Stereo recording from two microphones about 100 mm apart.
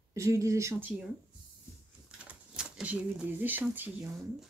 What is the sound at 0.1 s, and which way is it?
Speech, 30° right (ahead or behind).